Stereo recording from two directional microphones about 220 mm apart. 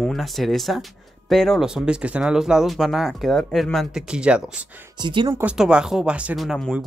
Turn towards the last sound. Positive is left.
turn(degrees=0)  # may be behind; listen again after turning